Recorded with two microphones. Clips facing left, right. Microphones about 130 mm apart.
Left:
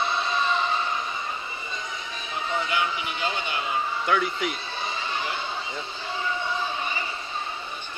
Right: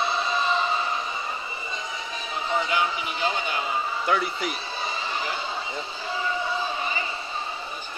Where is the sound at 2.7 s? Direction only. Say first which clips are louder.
Right 1 dB; 40° right (ahead or behind).